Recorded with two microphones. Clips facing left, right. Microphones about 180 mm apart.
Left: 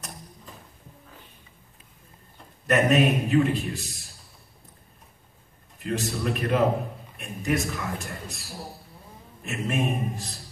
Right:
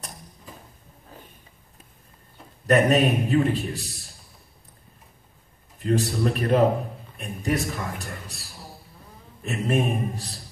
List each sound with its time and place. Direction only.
2.6 s a man's voice: 35° right (ahead or behind)
5.9 s a man's voice: 35° right (ahead or behind)
9.4 s a man's voice: 35° right (ahead or behind)